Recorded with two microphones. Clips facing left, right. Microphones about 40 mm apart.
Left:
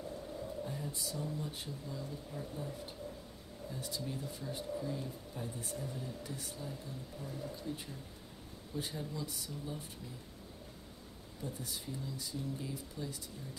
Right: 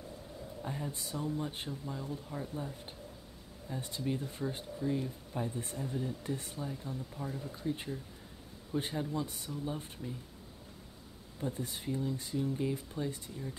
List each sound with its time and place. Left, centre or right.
0.6 s speech: right
11.4 s speech: right